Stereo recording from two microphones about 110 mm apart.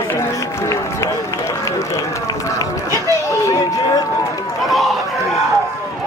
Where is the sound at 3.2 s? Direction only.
30° left (ahead or behind).